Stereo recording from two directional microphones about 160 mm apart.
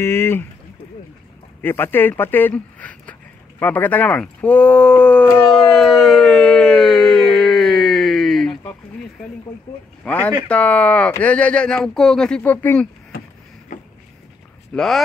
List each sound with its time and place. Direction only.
0.0 s speech: 15° left (ahead or behind)
1.6 s speech: 15° left (ahead or behind)
5.5 s a sound: centre (ahead or behind)
10.0 s speech: 10° left (ahead or behind)
13.7 s a sound: 50° left (ahead or behind)
14.7 s speech: centre (ahead or behind)